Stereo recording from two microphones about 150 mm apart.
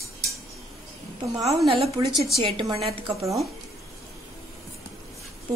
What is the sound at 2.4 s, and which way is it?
Speech, 30° right (ahead or behind).